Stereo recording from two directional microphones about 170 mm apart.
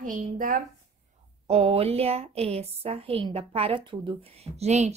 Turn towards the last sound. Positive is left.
turn(degrees=-40)  # may be behind; listen again after turning